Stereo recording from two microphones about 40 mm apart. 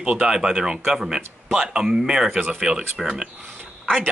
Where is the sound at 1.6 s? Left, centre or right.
Centre.